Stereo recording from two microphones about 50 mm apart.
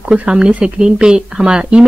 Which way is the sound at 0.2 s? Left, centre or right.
Right.